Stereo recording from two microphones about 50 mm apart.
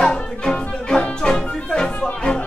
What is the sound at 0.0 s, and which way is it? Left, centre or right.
Music, centre.